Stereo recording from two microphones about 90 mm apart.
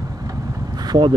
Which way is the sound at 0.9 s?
55° right (ahead or behind).